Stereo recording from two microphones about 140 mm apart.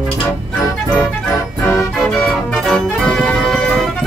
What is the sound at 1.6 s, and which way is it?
Music, 20° left (ahead or behind).